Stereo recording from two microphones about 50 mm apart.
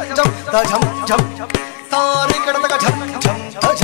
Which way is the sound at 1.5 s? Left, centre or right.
Centre.